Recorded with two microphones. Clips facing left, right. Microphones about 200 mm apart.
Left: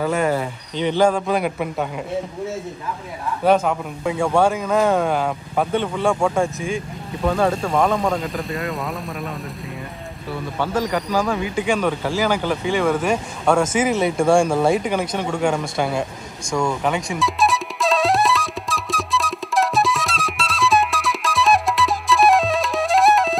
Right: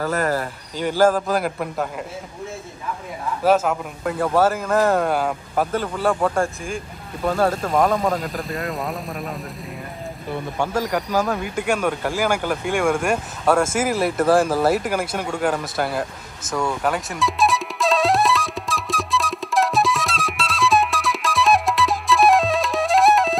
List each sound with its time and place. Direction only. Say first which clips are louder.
0.0 s speech: left 2 dB; centre (ahead or behind)
3.4 s speech: left 1 dB; 5° right (ahead or behind)
10.3 s speech: left 1 dB; 10° right (ahead or behind)
13.0 s a sound: left 1 dB; 5° right (ahead or behind)